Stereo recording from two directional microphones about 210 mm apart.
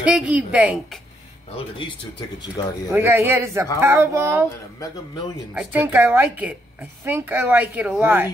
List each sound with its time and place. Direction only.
0.0 s speech: 5° right (ahead or behind)
2.6 s speech: 20° left (ahead or behind)
2.9 s a woman's voice: 10° right (ahead or behind)
5.5 s a woman's voice: 5° right (ahead or behind)